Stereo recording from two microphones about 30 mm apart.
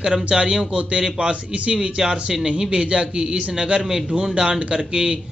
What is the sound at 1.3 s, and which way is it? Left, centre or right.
A man's voice, right.